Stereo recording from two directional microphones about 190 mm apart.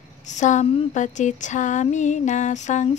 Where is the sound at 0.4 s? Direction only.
40° left (ahead or behind).